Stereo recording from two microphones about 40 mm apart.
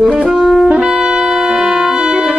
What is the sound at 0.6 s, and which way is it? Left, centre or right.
Music, right.